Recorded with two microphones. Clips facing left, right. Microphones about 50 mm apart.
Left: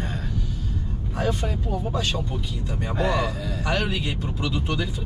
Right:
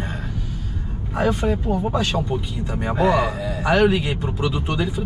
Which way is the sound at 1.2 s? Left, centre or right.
Right.